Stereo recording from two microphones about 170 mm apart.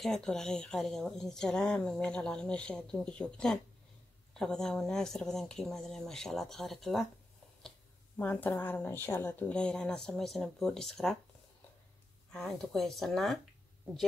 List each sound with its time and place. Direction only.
0.0 s a woman's voice: centre (ahead or behind)
8.2 s a woman's voice: 10° left (ahead or behind)
12.3 s a woman's voice: 5° left (ahead or behind)